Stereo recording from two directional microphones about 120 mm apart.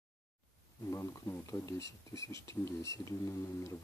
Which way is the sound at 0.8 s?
25° left (ahead or behind).